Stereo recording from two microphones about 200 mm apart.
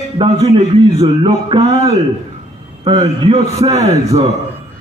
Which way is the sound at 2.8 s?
25° right (ahead or behind).